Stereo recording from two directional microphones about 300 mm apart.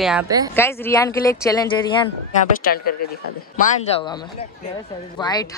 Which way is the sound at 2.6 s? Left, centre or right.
Left.